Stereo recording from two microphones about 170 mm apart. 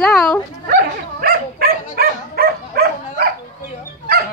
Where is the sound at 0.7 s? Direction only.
60° right (ahead or behind).